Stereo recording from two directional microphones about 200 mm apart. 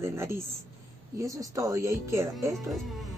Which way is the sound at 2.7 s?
Centre (ahead or behind).